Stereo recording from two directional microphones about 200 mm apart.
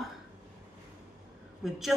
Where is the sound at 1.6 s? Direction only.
Centre (ahead or behind).